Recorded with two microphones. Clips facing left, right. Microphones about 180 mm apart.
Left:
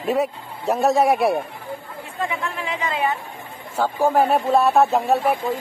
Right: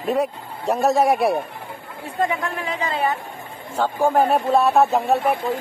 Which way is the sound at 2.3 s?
40° right (ahead or behind).